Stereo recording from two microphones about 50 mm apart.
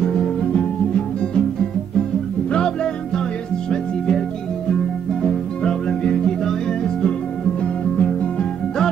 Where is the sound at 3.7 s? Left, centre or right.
Centre.